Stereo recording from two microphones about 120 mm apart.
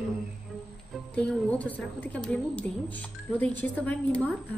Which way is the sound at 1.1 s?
10° left (ahead or behind).